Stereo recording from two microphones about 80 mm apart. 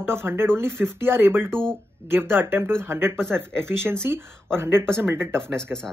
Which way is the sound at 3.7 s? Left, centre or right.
Right.